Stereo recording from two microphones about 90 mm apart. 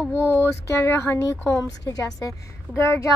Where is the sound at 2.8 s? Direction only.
25° left (ahead or behind).